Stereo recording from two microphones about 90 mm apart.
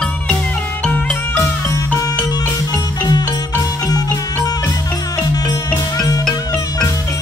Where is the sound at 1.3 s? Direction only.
30° left (ahead or behind).